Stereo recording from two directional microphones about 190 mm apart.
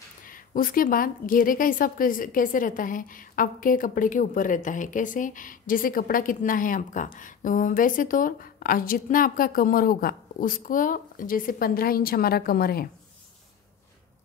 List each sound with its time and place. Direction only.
0.3 s a woman's voice: 45° left (ahead or behind)